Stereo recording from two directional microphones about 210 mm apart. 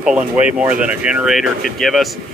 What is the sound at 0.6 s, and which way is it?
Speech, 5° right (ahead or behind).